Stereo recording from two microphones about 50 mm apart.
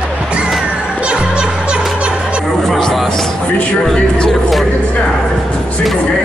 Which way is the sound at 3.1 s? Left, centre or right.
Centre.